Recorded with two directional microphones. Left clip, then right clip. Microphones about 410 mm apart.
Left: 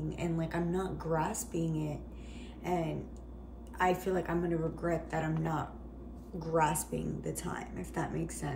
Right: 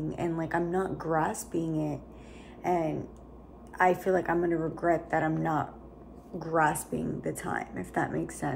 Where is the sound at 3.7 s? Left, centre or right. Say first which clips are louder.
Right 6 dB; centre.